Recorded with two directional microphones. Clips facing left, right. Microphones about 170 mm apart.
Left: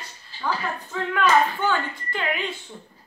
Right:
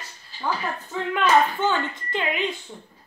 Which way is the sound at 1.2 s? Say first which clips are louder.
Right 1 dB; 20° right (ahead or behind).